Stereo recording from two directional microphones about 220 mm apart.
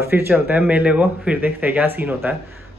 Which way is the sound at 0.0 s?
10° right (ahead or behind).